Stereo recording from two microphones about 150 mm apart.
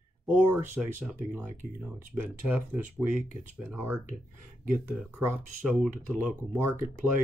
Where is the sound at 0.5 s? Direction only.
10° right (ahead or behind).